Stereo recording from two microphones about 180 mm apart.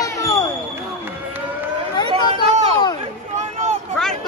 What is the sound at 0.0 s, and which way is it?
Basketball bounce, 15° left (ahead or behind).